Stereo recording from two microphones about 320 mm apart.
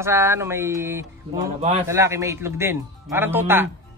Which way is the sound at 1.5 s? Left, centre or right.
Right.